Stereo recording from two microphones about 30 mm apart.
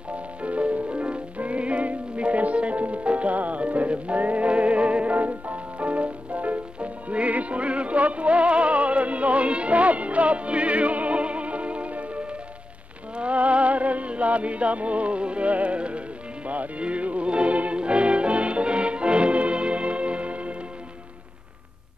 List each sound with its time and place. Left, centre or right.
0.1 s music: right
5.1 s music: right
16.4 s music: right
17.3 s music: right